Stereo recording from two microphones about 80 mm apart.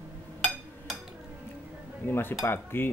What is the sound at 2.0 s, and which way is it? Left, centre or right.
Cutlery, left.